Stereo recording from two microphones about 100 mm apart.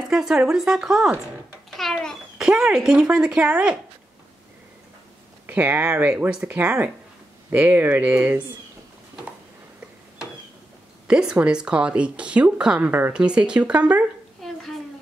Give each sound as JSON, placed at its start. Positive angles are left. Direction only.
{"t": 0.1, "sound": "speech", "side_deg": -5}
{"t": 5.5, "sound": "speech", "side_deg": -20}
{"t": 11.1, "sound": "speech", "side_deg": -10}
{"t": 14.4, "sound": "stir", "side_deg": 0}